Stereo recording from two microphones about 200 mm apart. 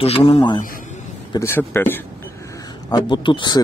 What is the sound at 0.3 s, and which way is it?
A man's voice, 20° left (ahead or behind).